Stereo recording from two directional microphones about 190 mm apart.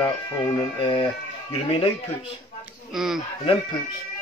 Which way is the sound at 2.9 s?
Centre (ahead or behind).